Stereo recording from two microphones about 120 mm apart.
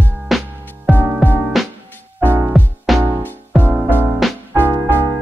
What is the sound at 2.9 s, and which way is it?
Music, centre (ahead or behind).